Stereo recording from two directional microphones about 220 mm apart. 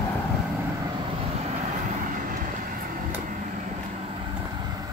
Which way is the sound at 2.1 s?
40° right (ahead or behind).